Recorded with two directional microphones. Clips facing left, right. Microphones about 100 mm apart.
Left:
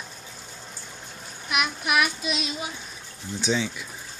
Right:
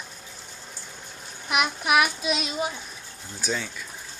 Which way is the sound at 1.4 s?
40° right (ahead or behind).